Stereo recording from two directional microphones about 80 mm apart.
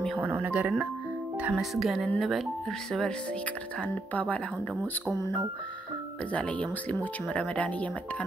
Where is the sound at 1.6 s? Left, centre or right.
Centre.